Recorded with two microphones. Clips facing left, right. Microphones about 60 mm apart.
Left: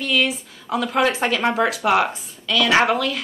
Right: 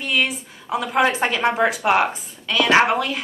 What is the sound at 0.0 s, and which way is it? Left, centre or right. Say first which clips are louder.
A woman's voice: left 1 dB; right.